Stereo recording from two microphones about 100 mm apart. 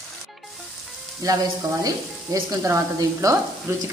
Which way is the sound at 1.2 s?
35° right (ahead or behind).